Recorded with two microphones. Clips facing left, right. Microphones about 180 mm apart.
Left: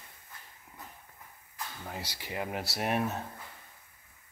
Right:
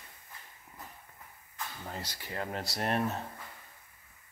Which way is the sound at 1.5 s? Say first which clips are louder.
Even; 5° left (ahead or behind).